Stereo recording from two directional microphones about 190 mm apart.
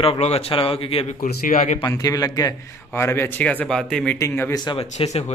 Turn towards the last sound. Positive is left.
turn(degrees=35)  # may be behind; listen again after turning